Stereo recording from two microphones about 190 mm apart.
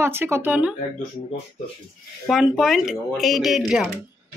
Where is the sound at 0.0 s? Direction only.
10° right (ahead or behind).